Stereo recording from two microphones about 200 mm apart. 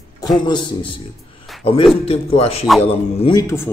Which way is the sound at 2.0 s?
30° left (ahead or behind).